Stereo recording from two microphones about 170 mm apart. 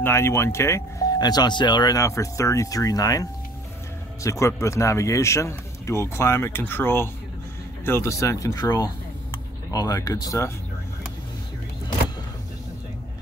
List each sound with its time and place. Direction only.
0.0 s speech: 15° left (ahead or behind)